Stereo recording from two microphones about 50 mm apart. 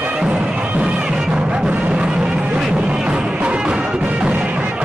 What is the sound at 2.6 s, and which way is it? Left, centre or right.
Music, centre.